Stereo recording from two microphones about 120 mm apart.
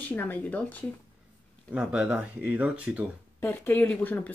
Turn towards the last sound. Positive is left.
turn(degrees=15)  # may be behind; listen again after turning